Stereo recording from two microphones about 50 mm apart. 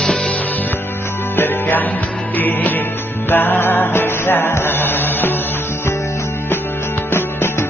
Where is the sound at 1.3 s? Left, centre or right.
Left.